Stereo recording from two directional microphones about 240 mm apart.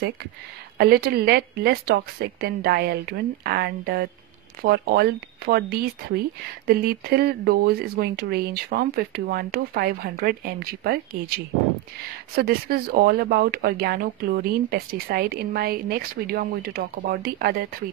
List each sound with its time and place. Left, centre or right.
0.7 s speech: right